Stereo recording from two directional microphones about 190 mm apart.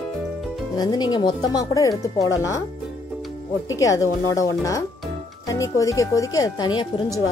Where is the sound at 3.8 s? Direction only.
15° left (ahead or behind).